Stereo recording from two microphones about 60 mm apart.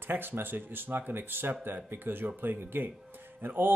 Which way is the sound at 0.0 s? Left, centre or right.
Right.